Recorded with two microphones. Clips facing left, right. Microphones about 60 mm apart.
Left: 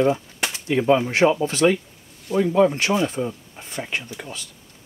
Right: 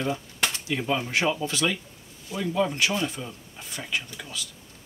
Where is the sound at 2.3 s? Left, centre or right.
Left.